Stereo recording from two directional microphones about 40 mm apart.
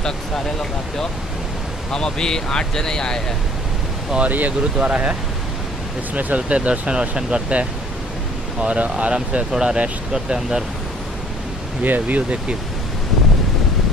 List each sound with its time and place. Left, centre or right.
0.0 s speech: centre
4.2 s speech: right
4.7 s speech: right
6.1 s speech: right
9.5 s speech: centre
11.8 s speech: right